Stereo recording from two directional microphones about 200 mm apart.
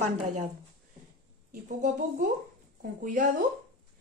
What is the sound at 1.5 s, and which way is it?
A woman's voice, 40° right (ahead or behind).